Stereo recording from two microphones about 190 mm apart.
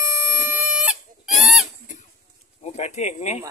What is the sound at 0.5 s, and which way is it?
Chicken, 5° right (ahead or behind).